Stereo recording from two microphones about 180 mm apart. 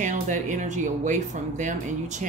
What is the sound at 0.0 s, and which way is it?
A woman's voice, 45° right (ahead or behind).